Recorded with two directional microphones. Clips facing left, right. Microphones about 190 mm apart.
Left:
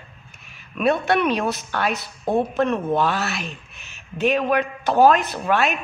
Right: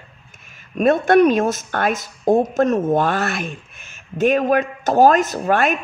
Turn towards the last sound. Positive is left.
turn(degrees=-45)  # may be behind; listen again after turning